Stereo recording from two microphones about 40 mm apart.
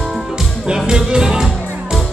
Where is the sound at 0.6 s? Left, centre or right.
Centre.